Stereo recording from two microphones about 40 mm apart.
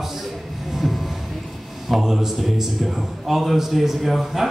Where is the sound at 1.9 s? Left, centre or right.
Centre.